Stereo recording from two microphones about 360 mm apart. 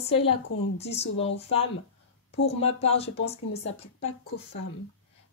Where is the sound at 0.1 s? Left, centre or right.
Centre.